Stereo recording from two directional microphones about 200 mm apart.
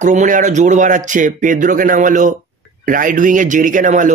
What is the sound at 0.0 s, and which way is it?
Speech, 40° right (ahead or behind).